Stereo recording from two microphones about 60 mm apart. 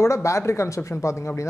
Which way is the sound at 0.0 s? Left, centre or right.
Left.